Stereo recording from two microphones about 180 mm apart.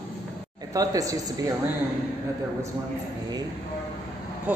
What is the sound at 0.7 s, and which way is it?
Speech, 20° right (ahead or behind).